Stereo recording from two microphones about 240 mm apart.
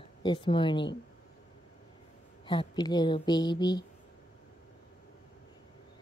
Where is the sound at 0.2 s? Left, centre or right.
Centre.